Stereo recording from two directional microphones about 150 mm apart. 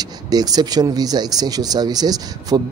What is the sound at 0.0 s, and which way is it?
Speech, 25° right (ahead or behind).